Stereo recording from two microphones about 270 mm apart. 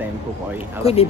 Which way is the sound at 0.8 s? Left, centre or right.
Left.